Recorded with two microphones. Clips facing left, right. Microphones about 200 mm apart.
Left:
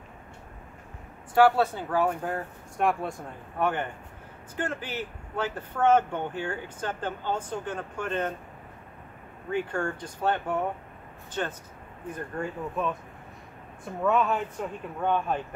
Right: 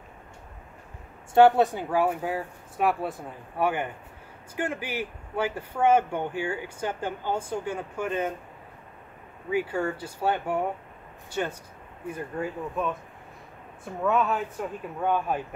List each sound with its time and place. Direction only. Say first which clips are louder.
1.3 s speech: right 3 dB; 20° right (ahead or behind)
9.5 s speech: right 2 dB; 5° right (ahead or behind)
14.0 s speech: even; centre (ahead or behind)